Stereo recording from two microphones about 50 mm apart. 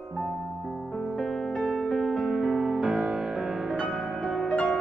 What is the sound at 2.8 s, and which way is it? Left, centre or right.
Music, right.